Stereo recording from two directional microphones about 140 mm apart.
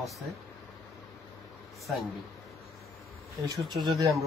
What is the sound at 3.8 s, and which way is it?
Speech, 25° right (ahead or behind).